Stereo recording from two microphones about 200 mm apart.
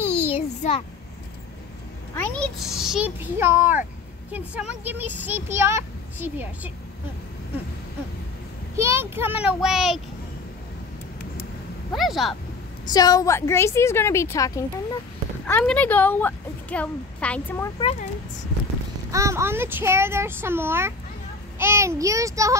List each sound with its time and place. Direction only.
0.3 s child singing: 30° left (ahead or behind)
2.1 s a child's voice: 5° left (ahead or behind)
8.7 s speech: 15° right (ahead or behind)
11.9 s a child's voice: centre (ahead or behind)
12.9 s a woman's voice: 20° left (ahead or behind)
19.1 s speech: 15° right (ahead or behind)